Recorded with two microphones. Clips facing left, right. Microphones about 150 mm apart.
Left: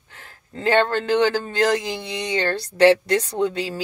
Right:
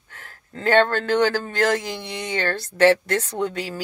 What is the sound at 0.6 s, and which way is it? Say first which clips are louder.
Speech: right 1 dB; 15° left (ahead or behind).